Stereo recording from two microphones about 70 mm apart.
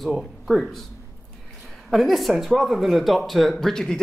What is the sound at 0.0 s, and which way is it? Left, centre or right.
Speech, centre.